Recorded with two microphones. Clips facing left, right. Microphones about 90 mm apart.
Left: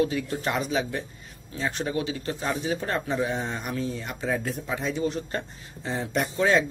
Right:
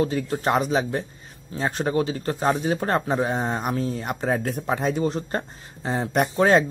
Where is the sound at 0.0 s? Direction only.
35° right (ahead or behind).